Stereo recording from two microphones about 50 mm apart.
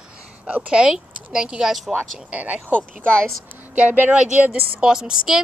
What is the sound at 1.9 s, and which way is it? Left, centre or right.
Speech, centre.